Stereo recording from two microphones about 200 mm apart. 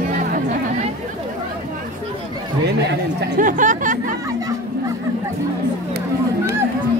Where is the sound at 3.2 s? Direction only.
40° right (ahead or behind).